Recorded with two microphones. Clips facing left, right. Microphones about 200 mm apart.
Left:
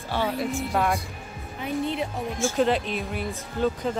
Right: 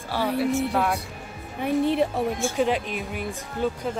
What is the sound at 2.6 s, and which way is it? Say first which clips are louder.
Speech: left 2 dB; 10° right (ahead or behind).